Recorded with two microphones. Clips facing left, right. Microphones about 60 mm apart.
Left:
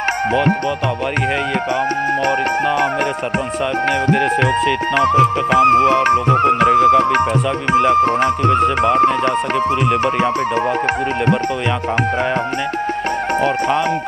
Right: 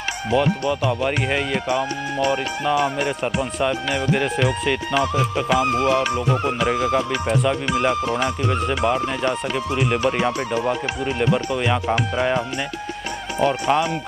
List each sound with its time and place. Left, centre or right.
0.3 s music: left
2.2 s music: left
4.9 s music: left